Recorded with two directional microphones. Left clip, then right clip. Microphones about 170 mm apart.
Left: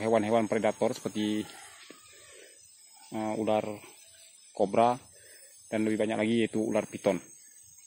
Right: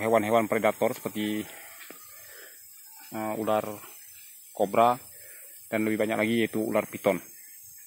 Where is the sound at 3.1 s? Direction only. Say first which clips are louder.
Right 1 dB; 20° left (ahead or behind).